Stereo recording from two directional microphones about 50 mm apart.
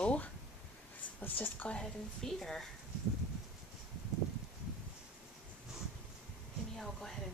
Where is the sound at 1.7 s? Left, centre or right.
Centre.